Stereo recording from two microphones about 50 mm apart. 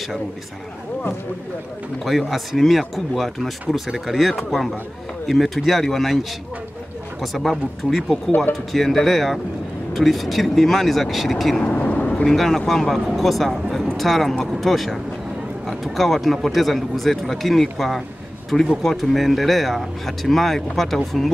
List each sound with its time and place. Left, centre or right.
2.0 s speech: centre
7.2 s speech: centre
11.6 s vehicle: left
12.1 s vehicle: centre
12.4 s speech: centre